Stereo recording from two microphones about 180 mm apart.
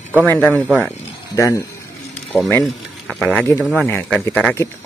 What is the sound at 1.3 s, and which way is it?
Speech, 15° left (ahead or behind).